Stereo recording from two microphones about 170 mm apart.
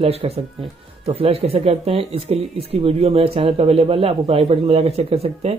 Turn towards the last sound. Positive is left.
turn(degrees=-35)  # may be behind; listen again after turning